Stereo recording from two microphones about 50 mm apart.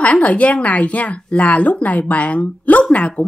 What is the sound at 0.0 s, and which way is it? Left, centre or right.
A woman's voice, left.